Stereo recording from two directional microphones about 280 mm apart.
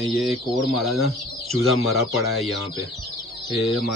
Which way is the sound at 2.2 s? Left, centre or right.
Right.